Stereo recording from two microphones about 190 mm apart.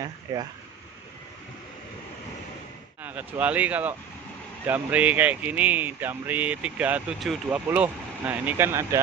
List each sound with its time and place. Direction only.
0.0 s speech: 20° right (ahead or behind)
3.0 s speech: 10° right (ahead or behind)